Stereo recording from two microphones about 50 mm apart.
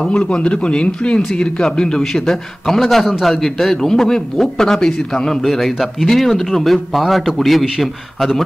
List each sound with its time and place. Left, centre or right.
0.0 s a man's voice: centre